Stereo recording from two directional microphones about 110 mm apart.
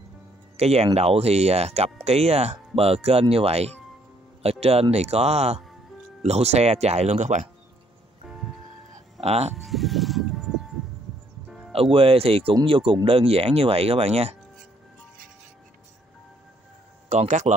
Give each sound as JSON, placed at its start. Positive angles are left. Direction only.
{"t": 0.6, "sound": "speech", "side_deg": -70}
{"t": 9.2, "sound": "speech", "side_deg": -75}
{"t": 9.6, "sound": "sheep", "side_deg": 0}
{"t": 11.4, "sound": "music", "side_deg": -5}
{"t": 11.7, "sound": "speech", "side_deg": -60}
{"t": 17.1, "sound": "speech", "side_deg": -90}